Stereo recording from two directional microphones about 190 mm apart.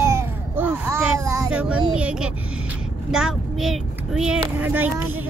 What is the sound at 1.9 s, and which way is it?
Speech, 5° right (ahead or behind).